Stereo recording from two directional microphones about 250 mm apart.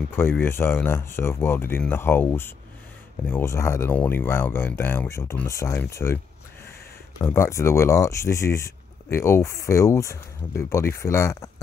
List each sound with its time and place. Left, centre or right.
0.1 s speech: centre
7.2 s speech: centre